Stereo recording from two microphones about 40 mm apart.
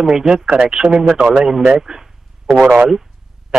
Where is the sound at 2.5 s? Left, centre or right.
Right.